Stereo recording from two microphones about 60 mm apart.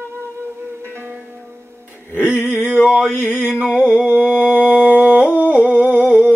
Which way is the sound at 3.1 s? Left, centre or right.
Left.